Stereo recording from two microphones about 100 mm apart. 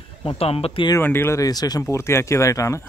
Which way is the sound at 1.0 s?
25° left (ahead or behind).